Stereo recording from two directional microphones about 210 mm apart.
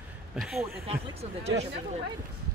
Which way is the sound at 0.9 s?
30° right (ahead or behind).